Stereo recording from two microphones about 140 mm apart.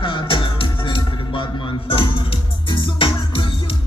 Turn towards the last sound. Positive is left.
turn(degrees=40)  # may be behind; listen again after turning